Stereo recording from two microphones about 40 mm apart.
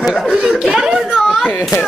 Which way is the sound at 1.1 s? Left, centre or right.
Centre.